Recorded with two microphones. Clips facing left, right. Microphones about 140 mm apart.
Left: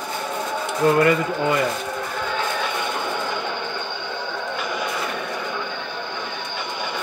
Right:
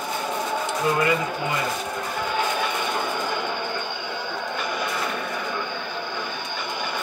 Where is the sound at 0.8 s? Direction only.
55° left (ahead or behind).